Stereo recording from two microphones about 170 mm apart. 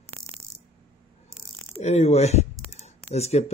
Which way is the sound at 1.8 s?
40° left (ahead or behind).